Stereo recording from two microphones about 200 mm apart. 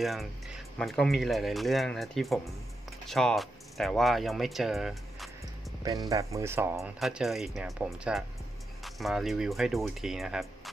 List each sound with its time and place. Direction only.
0.0 s speech: centre (ahead or behind)
5.9 s speech: 20° right (ahead or behind)
6.8 s speech: centre (ahead or behind)